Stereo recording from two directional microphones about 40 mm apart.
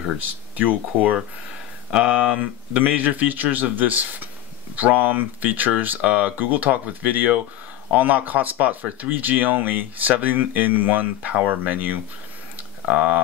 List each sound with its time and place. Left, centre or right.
0.6 s speech: right
1.9 s speech: right
2.8 s speech: right
9.2 s speech: right